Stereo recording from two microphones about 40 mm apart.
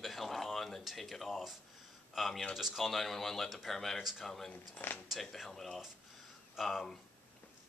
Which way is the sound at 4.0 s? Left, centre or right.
Centre.